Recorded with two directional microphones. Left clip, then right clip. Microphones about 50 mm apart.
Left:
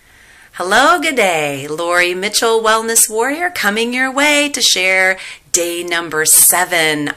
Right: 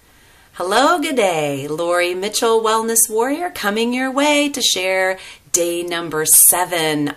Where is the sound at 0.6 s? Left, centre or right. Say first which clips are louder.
Left 4 dB; right.